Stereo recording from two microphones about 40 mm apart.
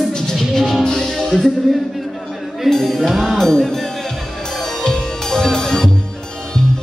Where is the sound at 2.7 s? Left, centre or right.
Centre.